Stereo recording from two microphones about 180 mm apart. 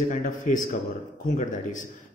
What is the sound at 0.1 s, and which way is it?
A man's voice, 45° left (ahead or behind).